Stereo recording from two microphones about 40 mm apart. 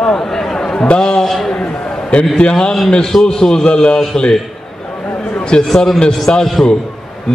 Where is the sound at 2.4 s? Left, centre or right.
Left.